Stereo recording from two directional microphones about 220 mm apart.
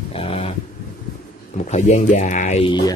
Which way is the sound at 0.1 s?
25° left (ahead or behind).